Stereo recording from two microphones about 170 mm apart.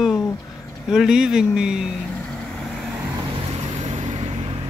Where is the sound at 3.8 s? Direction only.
45° right (ahead or behind).